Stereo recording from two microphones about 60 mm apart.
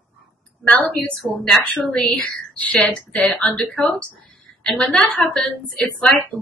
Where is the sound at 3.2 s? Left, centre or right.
Centre.